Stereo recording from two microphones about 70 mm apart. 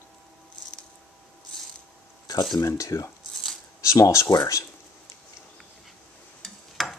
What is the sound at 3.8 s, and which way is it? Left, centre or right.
Speech, left.